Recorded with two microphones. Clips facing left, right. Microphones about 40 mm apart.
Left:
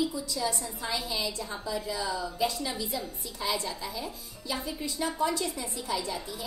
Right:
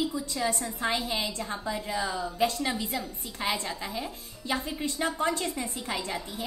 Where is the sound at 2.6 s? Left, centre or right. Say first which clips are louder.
Right 3 dB; right.